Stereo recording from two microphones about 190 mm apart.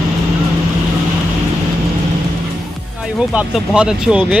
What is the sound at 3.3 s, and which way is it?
Speech, 5° right (ahead or behind).